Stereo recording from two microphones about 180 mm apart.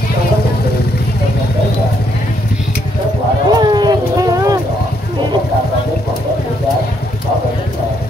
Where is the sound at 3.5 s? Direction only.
25° right (ahead or behind).